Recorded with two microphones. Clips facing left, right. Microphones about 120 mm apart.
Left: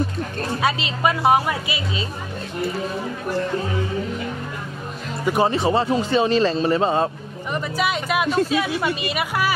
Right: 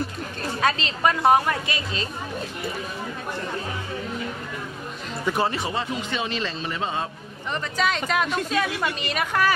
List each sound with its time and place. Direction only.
0.6 s speech: 10° left (ahead or behind)
5.2 s speech: 15° left (ahead or behind)
5.6 s speech: 35° left (ahead or behind)
7.5 s speech: 10° left (ahead or behind)